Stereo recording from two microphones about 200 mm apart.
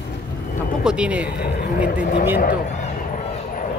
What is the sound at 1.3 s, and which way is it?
Speech, 50° left (ahead or behind).